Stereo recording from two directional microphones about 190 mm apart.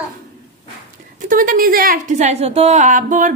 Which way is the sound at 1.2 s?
45° right (ahead or behind).